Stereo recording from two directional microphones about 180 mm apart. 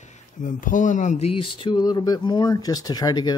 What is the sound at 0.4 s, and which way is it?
Speech, 45° left (ahead or behind).